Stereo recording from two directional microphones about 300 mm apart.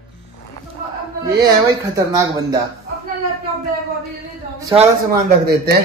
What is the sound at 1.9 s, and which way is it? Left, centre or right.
Speech, centre.